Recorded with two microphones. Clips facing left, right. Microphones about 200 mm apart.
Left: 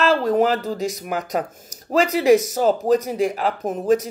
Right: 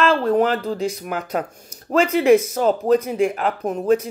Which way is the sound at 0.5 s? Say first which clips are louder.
Right 1 dB; 40° left (ahead or behind).